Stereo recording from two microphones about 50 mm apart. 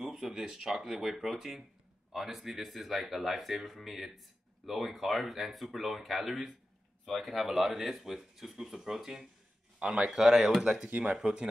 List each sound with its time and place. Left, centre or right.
0.0 s speech: centre
10.9 s speech: right
11.1 s speech: centre